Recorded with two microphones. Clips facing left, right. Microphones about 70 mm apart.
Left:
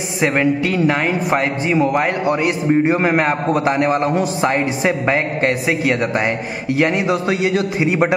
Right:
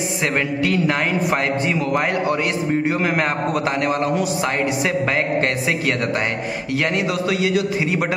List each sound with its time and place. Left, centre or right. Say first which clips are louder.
0.2 s a man's voice: left 6 dB; centre; by 4.5 s left
4.5 s a man's voice: left 3 dB; centre
6.7 s a man's voice: left 5 dB; left